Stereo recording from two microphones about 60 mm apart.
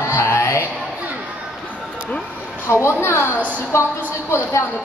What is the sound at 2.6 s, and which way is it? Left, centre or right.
Speech, left.